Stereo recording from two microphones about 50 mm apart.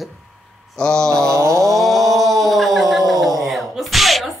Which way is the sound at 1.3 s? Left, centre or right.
Right.